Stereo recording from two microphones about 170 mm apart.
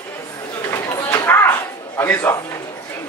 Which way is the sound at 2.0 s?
10° left (ahead or behind).